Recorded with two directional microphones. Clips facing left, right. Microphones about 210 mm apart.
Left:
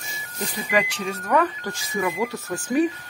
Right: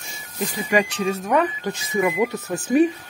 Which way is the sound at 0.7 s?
20° right (ahead or behind).